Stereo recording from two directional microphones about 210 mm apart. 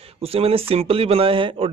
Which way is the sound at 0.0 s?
30° right (ahead or behind).